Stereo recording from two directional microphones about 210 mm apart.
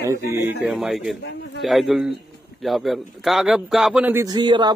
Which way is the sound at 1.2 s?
55° left (ahead or behind).